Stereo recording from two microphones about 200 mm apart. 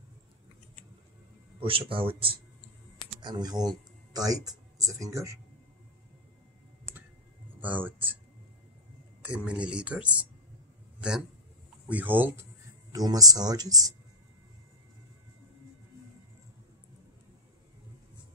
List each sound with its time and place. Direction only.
1.6 s speech: 25° right (ahead or behind)
7.6 s speech: 10° right (ahead or behind)
9.2 s a man's voice: 5° right (ahead or behind)